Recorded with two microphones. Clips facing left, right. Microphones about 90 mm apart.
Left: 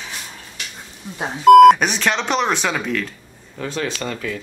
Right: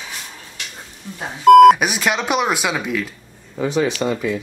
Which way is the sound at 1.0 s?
15° left (ahead or behind).